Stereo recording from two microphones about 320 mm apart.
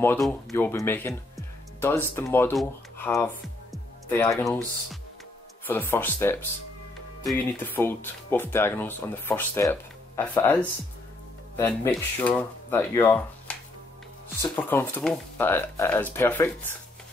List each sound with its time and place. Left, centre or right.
0.0 s speech: centre
3.7 s music: centre
5.7 s speech: centre